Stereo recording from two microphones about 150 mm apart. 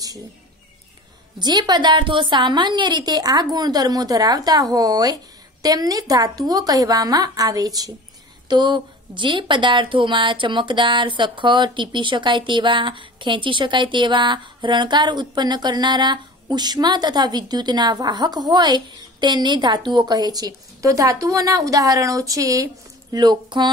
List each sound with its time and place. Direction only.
1.4 s a woman's voice: 30° right (ahead or behind)